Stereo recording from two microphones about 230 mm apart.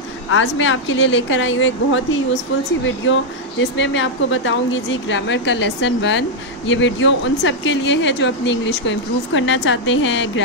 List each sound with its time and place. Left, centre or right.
0.3 s speech: left
3.1 s speech: left